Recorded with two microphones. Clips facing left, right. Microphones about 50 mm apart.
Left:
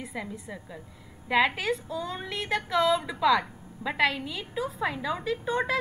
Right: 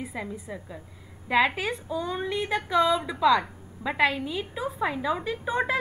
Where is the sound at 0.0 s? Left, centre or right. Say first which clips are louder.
Right 2 dB; centre.